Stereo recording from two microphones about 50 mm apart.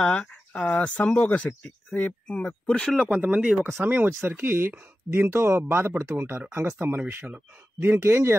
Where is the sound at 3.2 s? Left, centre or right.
Right.